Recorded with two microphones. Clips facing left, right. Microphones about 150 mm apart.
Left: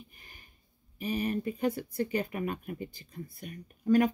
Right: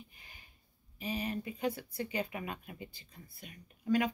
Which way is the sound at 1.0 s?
50° left (ahead or behind).